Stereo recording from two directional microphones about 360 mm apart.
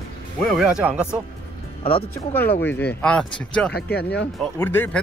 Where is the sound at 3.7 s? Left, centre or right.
Left.